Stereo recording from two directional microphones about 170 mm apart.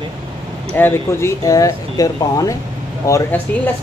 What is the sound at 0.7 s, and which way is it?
Speech, 15° left (ahead or behind).